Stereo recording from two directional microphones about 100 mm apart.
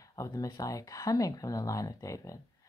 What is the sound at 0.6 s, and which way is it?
Speech, 35° left (ahead or behind).